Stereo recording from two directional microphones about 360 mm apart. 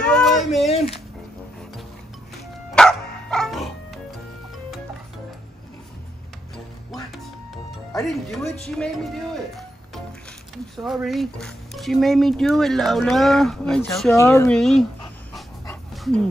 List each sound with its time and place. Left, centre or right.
0.0 s a sound: centre
0.7 s a sound: centre
2.7 s music: centre
7.5 s music: centre
10.5 s speech: centre
15.3 s dog: centre